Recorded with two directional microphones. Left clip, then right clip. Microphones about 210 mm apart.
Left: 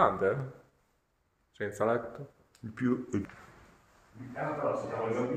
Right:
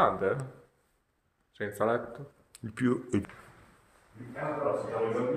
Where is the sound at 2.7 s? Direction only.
50° right (ahead or behind).